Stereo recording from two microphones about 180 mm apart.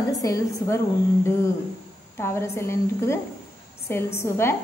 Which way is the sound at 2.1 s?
15° left (ahead or behind).